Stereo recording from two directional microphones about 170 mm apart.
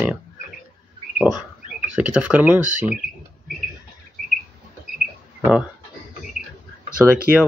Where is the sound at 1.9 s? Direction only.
5° right (ahead or behind).